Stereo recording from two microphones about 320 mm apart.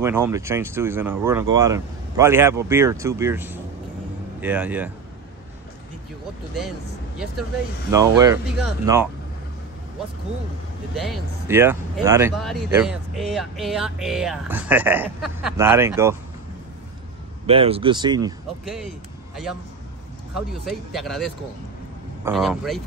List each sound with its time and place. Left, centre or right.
0.0 s speech: centre
7.9 s speech: centre
11.1 s speech: centre
17.5 s speech: centre
18.7 s speech: centre